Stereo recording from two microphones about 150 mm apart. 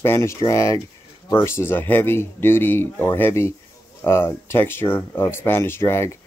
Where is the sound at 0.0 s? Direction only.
15° left (ahead or behind).